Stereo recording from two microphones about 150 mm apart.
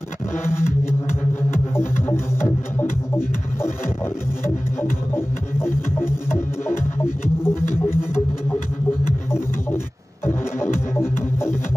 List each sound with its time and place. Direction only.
1.5 s music: 15° left (ahead or behind)
5.1 s music: 15° left (ahead or behind)
10.2 s music: 15° left (ahead or behind)